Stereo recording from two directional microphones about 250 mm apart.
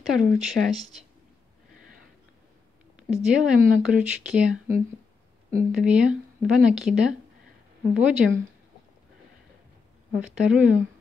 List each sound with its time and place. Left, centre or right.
0.0 s speech: centre
3.0 s speech: centre
10.2 s speech: centre